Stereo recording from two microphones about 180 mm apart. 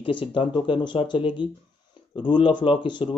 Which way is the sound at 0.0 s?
30° left (ahead or behind).